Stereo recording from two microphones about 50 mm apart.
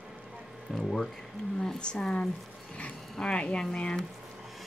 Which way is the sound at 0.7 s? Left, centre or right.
Centre.